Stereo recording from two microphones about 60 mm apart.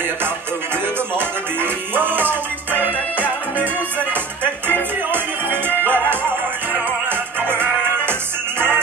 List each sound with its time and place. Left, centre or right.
1.1 s music: right